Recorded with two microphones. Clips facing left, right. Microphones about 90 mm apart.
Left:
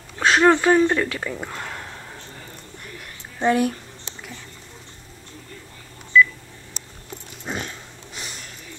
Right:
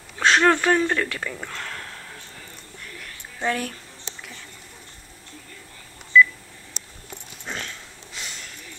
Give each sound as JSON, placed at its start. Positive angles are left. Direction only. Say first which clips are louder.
{"t": 0.2, "sound": "speech", "louder": "left 2 dB", "side_deg": 5}
{"t": 3.0, "sound": "a sound", "louder": "left 5 dB", "side_deg": 15}
{"t": 6.1, "sound": "telephone dialing", "louder": "even", "side_deg": 0}
{"t": 7.4, "sound": "sniff", "louder": "left 3 dB", "side_deg": 15}